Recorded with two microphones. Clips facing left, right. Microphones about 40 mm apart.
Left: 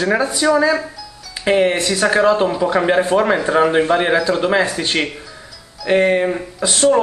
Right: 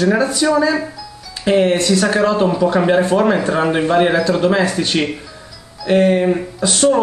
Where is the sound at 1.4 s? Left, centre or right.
Centre.